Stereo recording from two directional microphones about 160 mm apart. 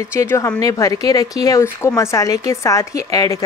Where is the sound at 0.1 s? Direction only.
15° left (ahead or behind).